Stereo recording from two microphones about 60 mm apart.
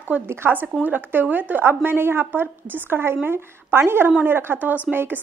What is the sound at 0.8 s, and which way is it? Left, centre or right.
A woman's voice, right.